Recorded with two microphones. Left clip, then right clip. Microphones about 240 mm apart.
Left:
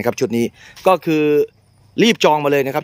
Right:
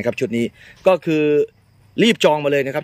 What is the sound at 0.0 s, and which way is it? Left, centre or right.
Speech, centre.